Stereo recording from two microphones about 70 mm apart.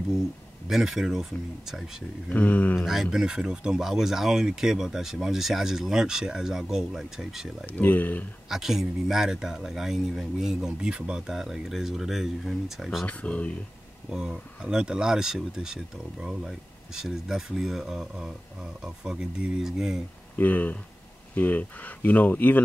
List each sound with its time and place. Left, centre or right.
0.7 s speech: centre
2.2 s speech: left
2.8 s speech: centre
7.6 s speech: left
8.5 s speech: centre
13.0 s speech: centre
14.1 s speech: centre
20.3 s speech: left